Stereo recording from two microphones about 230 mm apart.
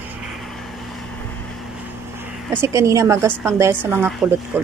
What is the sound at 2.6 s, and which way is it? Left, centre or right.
A woman's voice, centre.